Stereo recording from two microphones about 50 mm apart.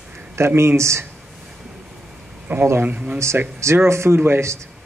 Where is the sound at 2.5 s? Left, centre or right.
Right.